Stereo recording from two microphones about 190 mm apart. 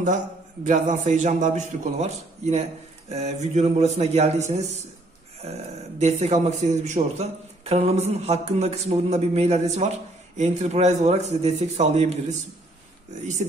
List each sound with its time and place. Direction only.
0.7 s a man's voice: 40° right (ahead or behind)
5.9 s a man's voice: 35° right (ahead or behind)